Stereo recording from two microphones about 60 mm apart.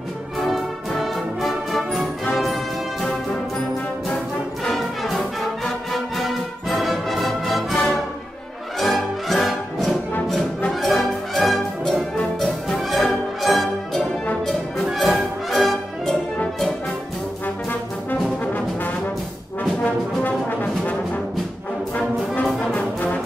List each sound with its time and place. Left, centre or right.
0.5 s music: centre
4.6 s music: centre
19.8 s brass instrument: left
21.9 s brass instrument: left